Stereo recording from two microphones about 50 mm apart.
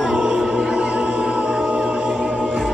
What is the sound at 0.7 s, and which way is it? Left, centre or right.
Music, centre.